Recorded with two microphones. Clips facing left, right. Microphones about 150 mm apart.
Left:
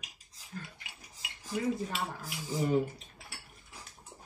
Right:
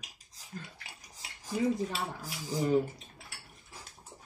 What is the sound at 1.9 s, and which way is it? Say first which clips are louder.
Speech: even; 40° right (ahead or behind).